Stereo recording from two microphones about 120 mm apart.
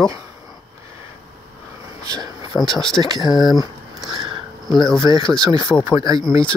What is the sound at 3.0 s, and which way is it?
Speech, 35° right (ahead or behind).